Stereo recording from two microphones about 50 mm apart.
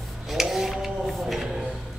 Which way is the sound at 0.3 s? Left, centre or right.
Centre.